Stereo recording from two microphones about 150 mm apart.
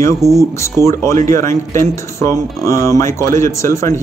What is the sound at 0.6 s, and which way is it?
Speech, 20° left (ahead or behind).